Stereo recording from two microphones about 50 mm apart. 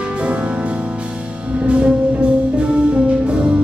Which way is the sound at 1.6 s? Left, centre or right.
Right.